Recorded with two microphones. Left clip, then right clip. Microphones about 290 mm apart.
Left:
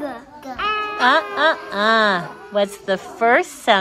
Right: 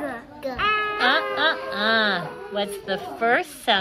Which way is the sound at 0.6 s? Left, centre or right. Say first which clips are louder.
Left 2 dB; left.